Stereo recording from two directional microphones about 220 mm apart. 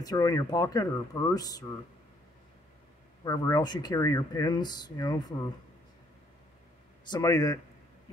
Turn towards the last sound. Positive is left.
turn(degrees=15)  # may be behind; listen again after turning